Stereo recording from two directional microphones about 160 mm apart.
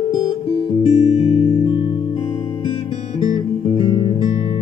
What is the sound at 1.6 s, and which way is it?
Music, 30° left (ahead or behind).